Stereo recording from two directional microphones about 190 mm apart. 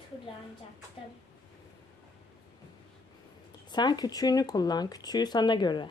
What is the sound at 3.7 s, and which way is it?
Speech, 20° left (ahead or behind).